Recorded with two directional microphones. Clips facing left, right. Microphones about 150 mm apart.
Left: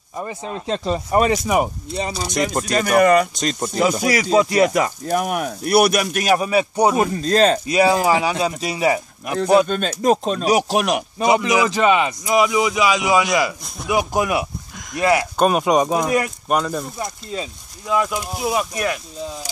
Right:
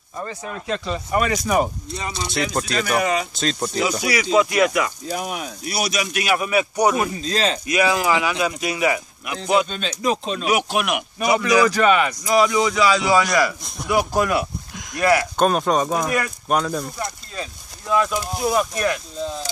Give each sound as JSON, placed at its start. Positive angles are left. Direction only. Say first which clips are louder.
{"t": 0.2, "sound": "speech", "louder": "left 2 dB", "side_deg": 25}
{"t": 0.8, "sound": "speech", "louder": "left 5 dB", "side_deg": 35}
{"t": 3.3, "sound": "speech", "louder": "left 1 dB", "side_deg": 15}
{"t": 4.0, "sound": "speech", "louder": "right 1 dB", "side_deg": 40}
{"t": 5.0, "sound": "speech", "louder": "left 6 dB", "side_deg": 55}
{"t": 6.2, "sound": "speech", "louder": "left 2 dB", "side_deg": 35}
{"t": 7.2, "sound": "speech", "louder": "left 7 dB", "side_deg": 50}
{"t": 7.6, "sound": "speech", "louder": "left 3 dB", "side_deg": 30}
{"t": 9.3, "sound": "speech", "louder": "left 5 dB", "side_deg": 45}
{"t": 11.2, "sound": "speech", "louder": "even", "side_deg": 20}
{"t": 12.4, "sound": "speech", "louder": "even", "side_deg": 10}
{"t": 15.3, "sound": "speech", "louder": "left 2 dB", "side_deg": 5}
{"t": 16.4, "sound": "speech", "louder": "left 1 dB", "side_deg": 0}
{"t": 17.0, "sound": "speech", "louder": "left 3 dB", "side_deg": 20}